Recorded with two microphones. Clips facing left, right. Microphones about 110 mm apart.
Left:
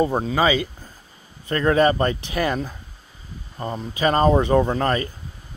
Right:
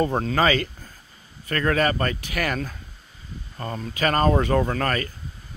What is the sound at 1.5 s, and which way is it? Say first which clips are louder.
Speech: left 4 dB; 20° left (ahead or behind).